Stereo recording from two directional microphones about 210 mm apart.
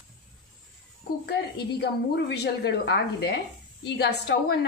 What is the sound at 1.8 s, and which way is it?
A woman's voice, 50° left (ahead or behind).